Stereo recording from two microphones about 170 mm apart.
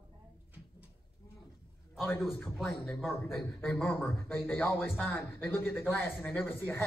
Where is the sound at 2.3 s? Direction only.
Centre (ahead or behind).